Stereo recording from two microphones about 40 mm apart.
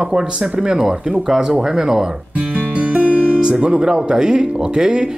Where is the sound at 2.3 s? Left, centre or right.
Right.